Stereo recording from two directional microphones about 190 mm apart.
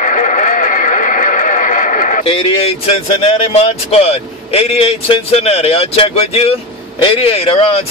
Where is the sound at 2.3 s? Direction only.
30° left (ahead or behind).